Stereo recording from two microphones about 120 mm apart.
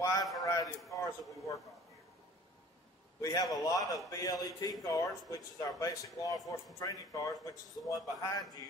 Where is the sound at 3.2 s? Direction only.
30° left (ahead or behind).